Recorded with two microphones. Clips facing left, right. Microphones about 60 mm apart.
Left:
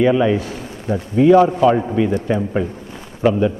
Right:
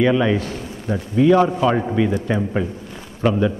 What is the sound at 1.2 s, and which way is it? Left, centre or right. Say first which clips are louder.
Speech: left 3 dB; centre.